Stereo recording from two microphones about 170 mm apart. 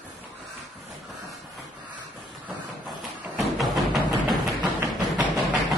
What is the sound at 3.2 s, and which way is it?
Music, centre (ahead or behind).